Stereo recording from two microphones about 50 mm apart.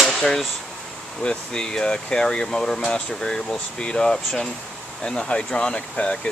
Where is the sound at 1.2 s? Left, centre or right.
Centre.